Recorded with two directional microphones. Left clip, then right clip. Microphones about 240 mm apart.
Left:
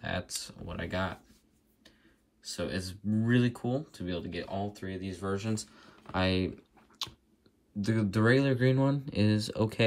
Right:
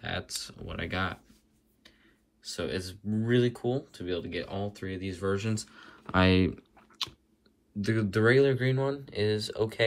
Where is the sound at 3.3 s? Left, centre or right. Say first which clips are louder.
Right 6 dB; right.